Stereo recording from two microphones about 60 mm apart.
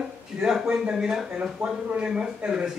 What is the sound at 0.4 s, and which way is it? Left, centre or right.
Speech, centre.